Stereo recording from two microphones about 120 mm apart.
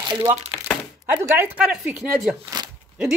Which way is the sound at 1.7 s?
Centre (ahead or behind).